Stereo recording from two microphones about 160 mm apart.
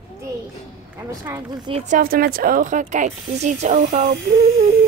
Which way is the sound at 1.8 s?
60° right (ahead or behind).